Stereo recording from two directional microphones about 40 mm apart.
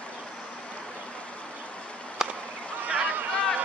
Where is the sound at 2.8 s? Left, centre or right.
Right.